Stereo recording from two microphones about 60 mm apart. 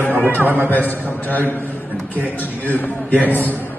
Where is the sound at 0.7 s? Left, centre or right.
Left.